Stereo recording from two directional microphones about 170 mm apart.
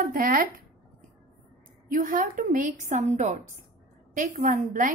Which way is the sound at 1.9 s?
55° right (ahead or behind).